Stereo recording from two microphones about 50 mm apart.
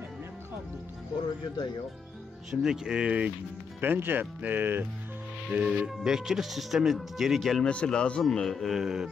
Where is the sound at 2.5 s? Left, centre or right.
Centre.